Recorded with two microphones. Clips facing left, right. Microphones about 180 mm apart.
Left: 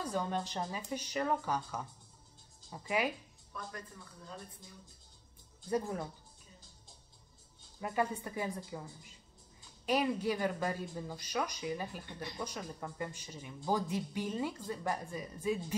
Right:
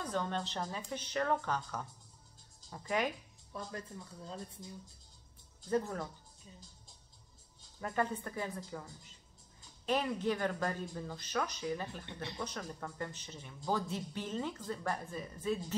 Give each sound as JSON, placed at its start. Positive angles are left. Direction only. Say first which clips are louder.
{"t": 0.0, "sound": "speech", "louder": "left 1 dB", "side_deg": 10}
{"t": 3.5, "sound": "speech", "louder": "right 2 dB", "side_deg": -25}
{"t": 5.7, "sound": "speech", "louder": "right 1 dB", "side_deg": 15}
{"t": 7.8, "sound": "speech", "louder": "left 1 dB", "side_deg": 10}
{"t": 9.8, "sound": "speech", "louder": "left 1 dB", "side_deg": 10}